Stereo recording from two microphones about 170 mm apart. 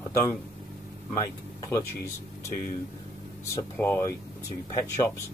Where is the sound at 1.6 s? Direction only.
15° left (ahead or behind).